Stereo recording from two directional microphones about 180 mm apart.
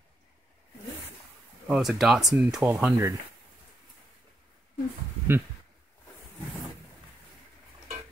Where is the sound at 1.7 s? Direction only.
Centre (ahead or behind).